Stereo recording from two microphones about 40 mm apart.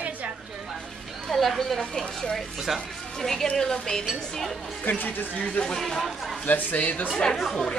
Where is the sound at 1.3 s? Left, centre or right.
Centre.